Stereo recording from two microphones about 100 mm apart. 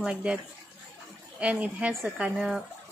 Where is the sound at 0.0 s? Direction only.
10° right (ahead or behind).